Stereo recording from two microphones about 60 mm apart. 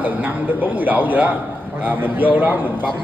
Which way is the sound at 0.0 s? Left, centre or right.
Right.